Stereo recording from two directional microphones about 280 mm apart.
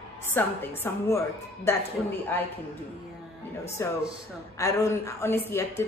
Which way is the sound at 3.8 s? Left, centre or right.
Centre.